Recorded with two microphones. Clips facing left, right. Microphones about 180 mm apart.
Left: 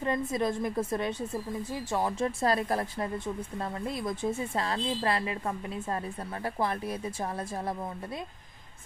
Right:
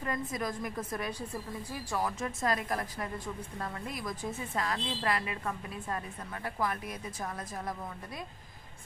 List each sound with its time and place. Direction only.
0.0 s a woman's voice: 25° left (ahead or behind)